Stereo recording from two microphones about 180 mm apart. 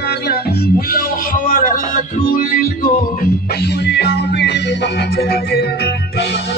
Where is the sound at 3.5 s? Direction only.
65° left (ahead or behind).